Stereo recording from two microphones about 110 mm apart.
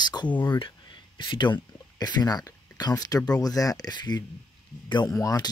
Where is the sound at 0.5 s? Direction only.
45° left (ahead or behind).